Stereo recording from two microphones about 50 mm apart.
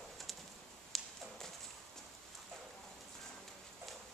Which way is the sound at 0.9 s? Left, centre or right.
Centre.